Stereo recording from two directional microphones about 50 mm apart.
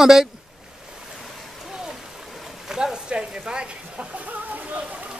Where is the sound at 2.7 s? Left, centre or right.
Centre.